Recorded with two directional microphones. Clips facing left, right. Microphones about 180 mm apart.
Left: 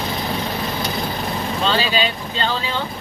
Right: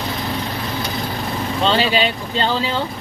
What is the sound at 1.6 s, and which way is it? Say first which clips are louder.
Speech: right 3 dB; 25° right (ahead or behind).